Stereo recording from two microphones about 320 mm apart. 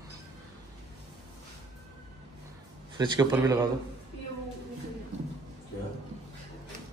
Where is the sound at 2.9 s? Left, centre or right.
Centre.